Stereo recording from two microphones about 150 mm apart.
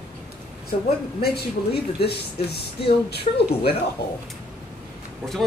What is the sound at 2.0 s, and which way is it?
Speech, 90° left.